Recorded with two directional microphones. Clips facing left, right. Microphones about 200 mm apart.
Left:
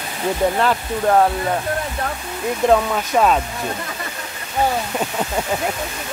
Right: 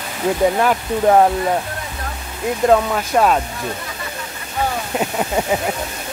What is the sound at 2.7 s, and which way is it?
Speech, centre (ahead or behind).